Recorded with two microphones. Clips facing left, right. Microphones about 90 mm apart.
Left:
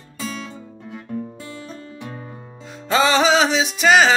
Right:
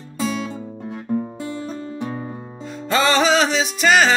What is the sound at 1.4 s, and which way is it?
Music, 30° right (ahead or behind).